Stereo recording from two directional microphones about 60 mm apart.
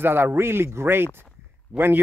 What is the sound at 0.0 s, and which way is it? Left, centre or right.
Speech, right.